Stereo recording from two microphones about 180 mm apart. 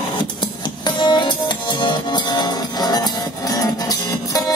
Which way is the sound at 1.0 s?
25° left (ahead or behind).